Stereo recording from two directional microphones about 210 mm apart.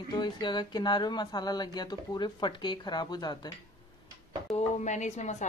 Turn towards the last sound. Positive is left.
turn(degrees=35)  # may be behind; listen again after turning